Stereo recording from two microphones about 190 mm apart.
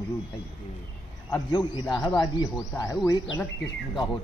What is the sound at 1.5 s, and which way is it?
A man's voice, 25° left (ahead or behind).